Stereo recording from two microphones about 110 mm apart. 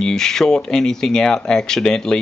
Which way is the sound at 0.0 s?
5° left (ahead or behind).